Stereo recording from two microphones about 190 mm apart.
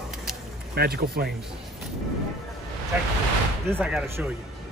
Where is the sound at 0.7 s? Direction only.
55° right (ahead or behind).